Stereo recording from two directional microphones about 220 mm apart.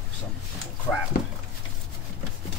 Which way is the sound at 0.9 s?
5° left (ahead or behind).